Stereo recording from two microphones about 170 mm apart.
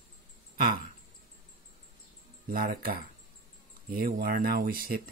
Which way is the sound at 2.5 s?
60° right (ahead or behind).